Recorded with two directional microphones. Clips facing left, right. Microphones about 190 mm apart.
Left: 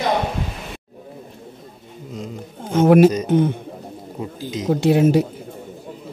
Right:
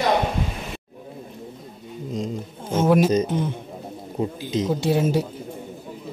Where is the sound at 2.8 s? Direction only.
60° left (ahead or behind).